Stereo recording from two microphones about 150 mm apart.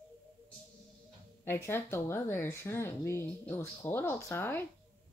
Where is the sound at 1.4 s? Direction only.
15° left (ahead or behind).